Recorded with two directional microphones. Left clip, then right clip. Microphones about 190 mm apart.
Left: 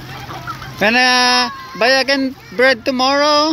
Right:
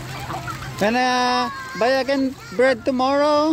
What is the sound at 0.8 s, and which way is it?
Speech, centre (ahead or behind).